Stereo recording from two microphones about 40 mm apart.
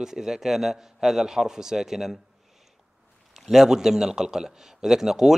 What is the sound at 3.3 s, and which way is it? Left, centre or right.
A man's voice, centre.